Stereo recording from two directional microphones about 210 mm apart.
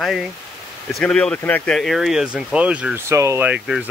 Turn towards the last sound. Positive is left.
turn(degrees=-5)  # may be behind; listen again after turning